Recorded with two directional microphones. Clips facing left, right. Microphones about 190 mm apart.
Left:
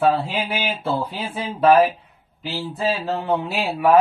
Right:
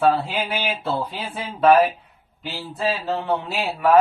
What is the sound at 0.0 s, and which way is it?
Speech, 10° left (ahead or behind).